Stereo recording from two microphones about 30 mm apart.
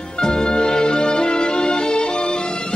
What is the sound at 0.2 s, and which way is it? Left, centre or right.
Music, left.